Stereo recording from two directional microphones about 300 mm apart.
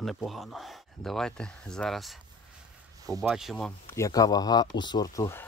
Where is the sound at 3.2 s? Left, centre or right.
Centre.